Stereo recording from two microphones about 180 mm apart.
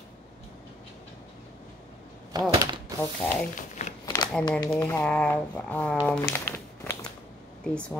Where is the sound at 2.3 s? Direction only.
20° right (ahead or behind).